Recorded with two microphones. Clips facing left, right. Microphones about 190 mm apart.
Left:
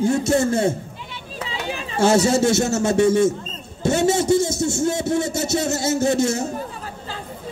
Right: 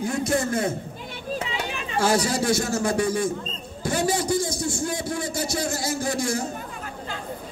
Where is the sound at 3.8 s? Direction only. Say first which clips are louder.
Left 6 dB; 25° left (ahead or behind).